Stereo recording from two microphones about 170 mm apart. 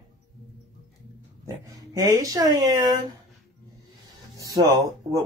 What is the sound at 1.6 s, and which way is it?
Speech, 20° right (ahead or behind).